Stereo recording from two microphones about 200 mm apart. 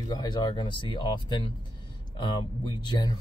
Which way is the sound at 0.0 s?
20° left (ahead or behind).